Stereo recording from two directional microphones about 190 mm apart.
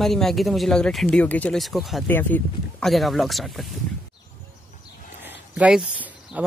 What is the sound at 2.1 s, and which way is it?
Speech, 10° left (ahead or behind).